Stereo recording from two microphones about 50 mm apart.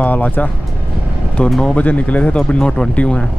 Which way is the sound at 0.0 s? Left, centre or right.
Left.